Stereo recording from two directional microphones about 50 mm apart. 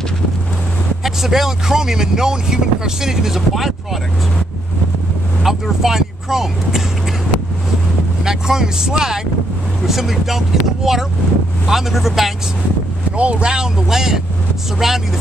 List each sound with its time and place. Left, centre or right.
1.0 s speech: centre
5.4 s speech: centre
8.2 s speech: centre
13.1 s speech: right; by 15.0 s centre